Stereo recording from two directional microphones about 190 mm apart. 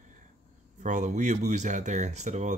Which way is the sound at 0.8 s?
40° right (ahead or behind).